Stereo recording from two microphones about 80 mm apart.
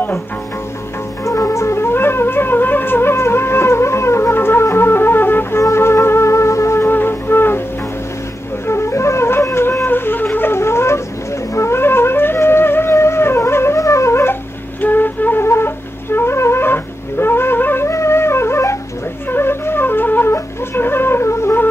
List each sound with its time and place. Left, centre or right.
1.2 s music: left
8.6 s flute: left
11.5 s music: left
14.8 s flute: left
19.3 s music: left